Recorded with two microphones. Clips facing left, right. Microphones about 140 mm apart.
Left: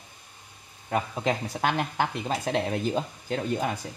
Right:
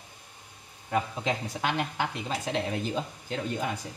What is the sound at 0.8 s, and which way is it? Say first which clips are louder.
Speech: left 2 dB; 50° left (ahead or behind).